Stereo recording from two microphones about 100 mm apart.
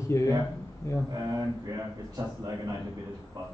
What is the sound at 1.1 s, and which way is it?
A man's voice, 35° right (ahead or behind).